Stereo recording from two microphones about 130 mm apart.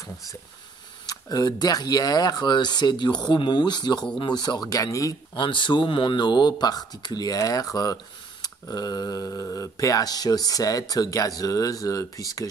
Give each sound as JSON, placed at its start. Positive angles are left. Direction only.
{"t": 1.0, "sound": "speech", "side_deg": 30}
{"t": 5.4, "sound": "speech", "side_deg": 40}